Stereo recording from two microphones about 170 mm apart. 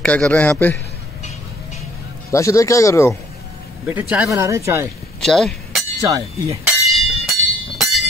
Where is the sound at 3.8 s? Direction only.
10° right (ahead or behind).